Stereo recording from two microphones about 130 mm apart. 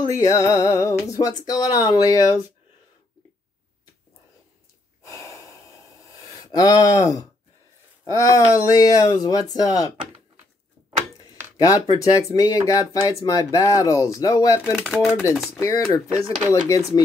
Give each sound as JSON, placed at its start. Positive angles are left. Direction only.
{"t": 0.1, "sound": "speech", "side_deg": 25}
{"t": 5.0, "sound": "breathing", "side_deg": 20}
{"t": 6.5, "sound": "speech", "side_deg": 25}
{"t": 11.5, "sound": "speech", "side_deg": 30}
{"t": 14.8, "sound": "speech", "side_deg": -5}
{"t": 15.6, "sound": "speech", "side_deg": 25}